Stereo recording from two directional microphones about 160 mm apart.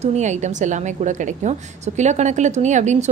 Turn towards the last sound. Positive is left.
turn(degrees=-50)  # may be behind; listen again after turning